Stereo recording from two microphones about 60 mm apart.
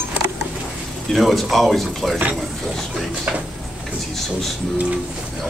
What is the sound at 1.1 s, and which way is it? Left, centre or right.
A man's voice, centre.